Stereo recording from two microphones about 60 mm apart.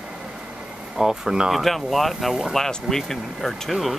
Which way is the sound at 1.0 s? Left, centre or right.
Centre.